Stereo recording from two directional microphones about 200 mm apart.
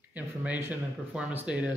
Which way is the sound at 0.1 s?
10° right (ahead or behind).